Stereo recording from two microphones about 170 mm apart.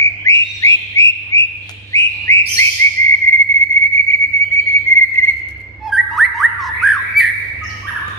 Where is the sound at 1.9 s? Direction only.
15° left (ahead or behind).